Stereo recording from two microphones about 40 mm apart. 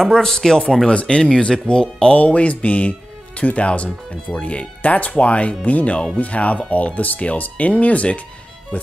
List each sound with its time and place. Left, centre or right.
0.0 s speech: centre
2.1 s speech: left